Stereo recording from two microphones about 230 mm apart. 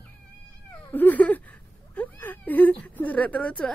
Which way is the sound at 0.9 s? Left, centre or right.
Centre.